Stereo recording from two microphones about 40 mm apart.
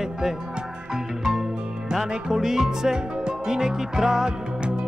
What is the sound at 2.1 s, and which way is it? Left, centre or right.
Music, centre.